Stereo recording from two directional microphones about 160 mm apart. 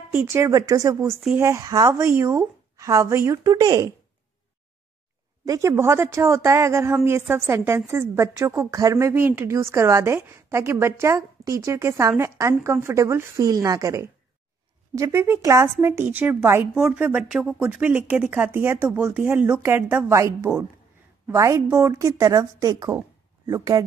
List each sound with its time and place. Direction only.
0.1 s a woman's voice: 15° right (ahead or behind)
5.4 s a woman's voice: 20° right (ahead or behind)